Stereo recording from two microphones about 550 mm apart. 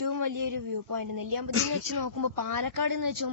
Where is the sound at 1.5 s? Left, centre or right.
Right.